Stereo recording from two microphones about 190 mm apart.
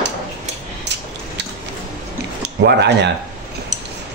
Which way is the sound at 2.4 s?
60° right (ahead or behind).